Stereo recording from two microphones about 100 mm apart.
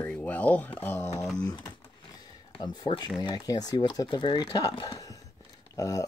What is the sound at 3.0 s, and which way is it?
Speech, 45° left (ahead or behind).